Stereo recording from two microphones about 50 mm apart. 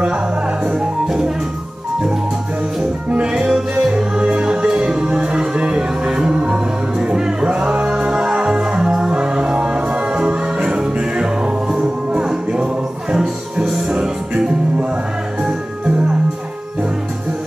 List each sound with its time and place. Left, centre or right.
0.7 s music: centre
3.1 s music: right